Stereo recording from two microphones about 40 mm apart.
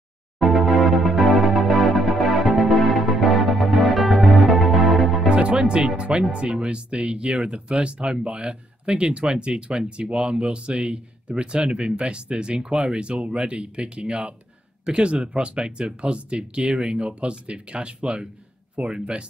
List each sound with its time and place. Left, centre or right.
0.4 s music: centre
5.3 s music: right
5.7 s speech: right